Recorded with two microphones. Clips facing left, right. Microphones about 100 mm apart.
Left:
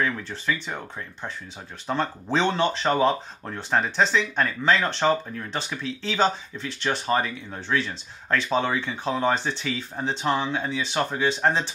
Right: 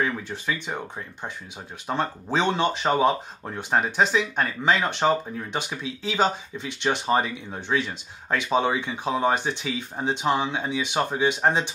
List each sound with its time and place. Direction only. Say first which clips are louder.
0.0 s speech: even; 10° right (ahead or behind)
1.9 s speech: even; 10° right (ahead or behind)